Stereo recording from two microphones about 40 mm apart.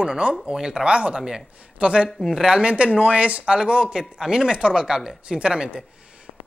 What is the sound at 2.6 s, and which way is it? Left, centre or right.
Speech, right.